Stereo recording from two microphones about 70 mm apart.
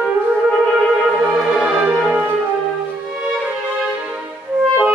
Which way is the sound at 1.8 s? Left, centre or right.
Centre.